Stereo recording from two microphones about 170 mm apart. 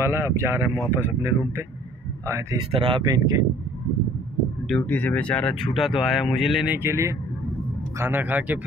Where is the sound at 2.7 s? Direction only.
30° right (ahead or behind).